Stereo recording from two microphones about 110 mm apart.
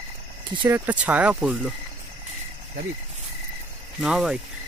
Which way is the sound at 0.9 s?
10° right (ahead or behind).